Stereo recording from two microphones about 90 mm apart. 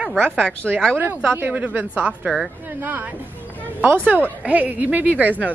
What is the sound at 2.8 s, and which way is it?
Speech, 20° right (ahead or behind).